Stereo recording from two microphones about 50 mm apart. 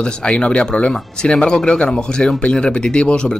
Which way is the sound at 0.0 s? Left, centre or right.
Centre.